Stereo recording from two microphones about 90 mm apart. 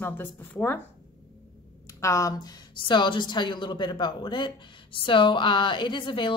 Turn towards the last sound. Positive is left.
turn(degrees=60)  # may be behind; listen again after turning